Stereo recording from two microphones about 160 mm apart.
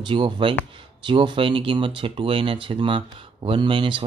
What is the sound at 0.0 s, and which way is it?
Speech, 30° right (ahead or behind).